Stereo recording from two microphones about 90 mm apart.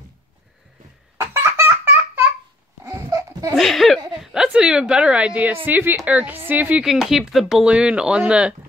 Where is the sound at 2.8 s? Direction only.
40° right (ahead or behind).